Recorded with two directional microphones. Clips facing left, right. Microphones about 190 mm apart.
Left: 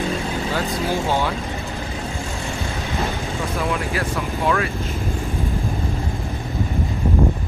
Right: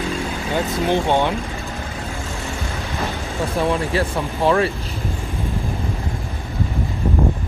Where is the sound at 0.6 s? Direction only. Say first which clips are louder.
Right 6 dB; 25° right (ahead or behind).